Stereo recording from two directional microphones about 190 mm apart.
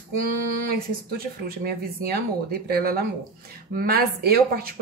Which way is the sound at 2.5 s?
50° right (ahead or behind).